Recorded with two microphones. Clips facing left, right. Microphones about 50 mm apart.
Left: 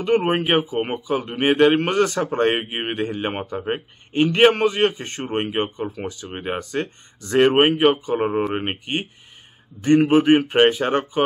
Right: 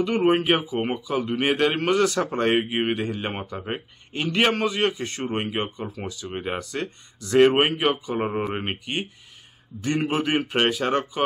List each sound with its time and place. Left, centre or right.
0.0 s a man's voice: left
3.5 s a man's voice: centre; by 6.2 s left
6.2 s speech: centre
6.6 s a man's voice: left